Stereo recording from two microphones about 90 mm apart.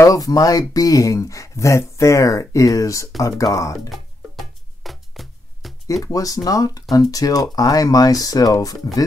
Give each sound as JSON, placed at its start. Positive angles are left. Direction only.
{"t": 0.0, "sound": "speech", "side_deg": 40}
{"t": 3.9, "sound": "music", "side_deg": 0}
{"t": 6.0, "sound": "speech", "side_deg": 40}